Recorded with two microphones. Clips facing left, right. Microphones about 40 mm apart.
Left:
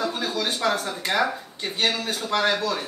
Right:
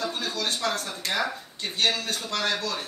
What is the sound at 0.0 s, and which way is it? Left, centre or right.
Speech, centre.